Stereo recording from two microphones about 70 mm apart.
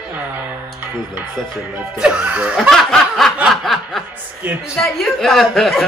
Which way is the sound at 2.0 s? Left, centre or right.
Centre.